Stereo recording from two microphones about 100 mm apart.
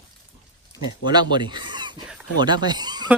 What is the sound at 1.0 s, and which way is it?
Speech, 45° right (ahead or behind).